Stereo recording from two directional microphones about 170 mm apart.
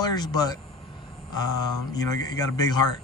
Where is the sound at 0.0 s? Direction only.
25° left (ahead or behind).